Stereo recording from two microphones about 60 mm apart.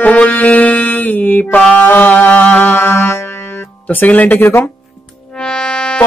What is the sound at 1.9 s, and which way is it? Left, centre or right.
Music, left.